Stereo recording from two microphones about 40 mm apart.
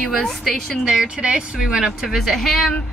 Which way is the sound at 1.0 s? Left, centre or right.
Right.